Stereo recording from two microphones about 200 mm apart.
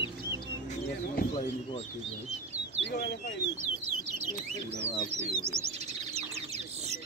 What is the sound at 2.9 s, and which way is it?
Speech, 50° left (ahead or behind).